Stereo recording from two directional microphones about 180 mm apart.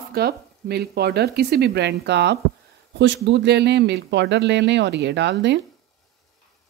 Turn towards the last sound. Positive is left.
turn(degrees=-75)  # may be behind; listen again after turning